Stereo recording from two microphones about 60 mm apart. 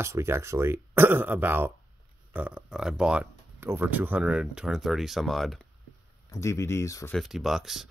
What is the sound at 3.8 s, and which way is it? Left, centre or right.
Speech, right.